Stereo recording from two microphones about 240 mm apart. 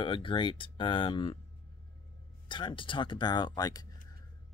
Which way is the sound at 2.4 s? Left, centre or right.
Centre.